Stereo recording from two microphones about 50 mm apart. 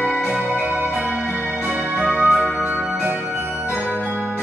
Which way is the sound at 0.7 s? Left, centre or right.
Right.